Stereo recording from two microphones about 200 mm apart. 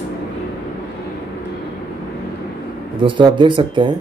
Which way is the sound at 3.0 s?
25° right (ahead or behind).